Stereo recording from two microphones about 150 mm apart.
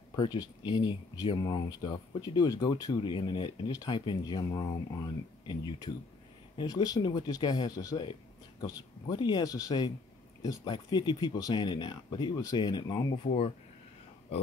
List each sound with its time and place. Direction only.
0.1 s speech: 30° left (ahead or behind)
13.2 s speech: 45° left (ahead or behind)